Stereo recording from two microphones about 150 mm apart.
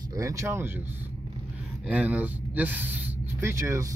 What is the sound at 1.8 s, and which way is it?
Speech, 10° right (ahead or behind).